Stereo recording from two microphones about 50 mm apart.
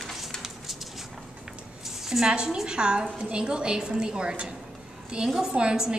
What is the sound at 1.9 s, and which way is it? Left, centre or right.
A woman's voice, centre.